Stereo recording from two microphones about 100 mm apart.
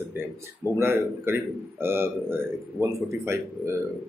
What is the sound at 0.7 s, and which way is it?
A man's voice, 25° right (ahead or behind).